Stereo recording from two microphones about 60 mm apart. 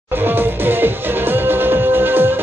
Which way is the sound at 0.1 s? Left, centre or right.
Right.